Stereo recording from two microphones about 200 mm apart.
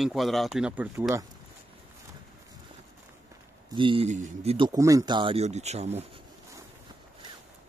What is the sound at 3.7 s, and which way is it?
Speech, 25° right (ahead or behind).